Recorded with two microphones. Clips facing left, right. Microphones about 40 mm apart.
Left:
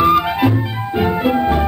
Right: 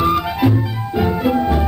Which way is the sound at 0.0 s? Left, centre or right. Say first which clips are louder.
Left 3 dB; left.